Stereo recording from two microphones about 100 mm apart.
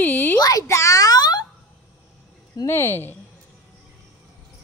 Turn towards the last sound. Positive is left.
turn(degrees=20)  # may be behind; listen again after turning